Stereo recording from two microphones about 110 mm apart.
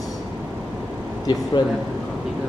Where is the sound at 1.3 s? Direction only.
35° left (ahead or behind).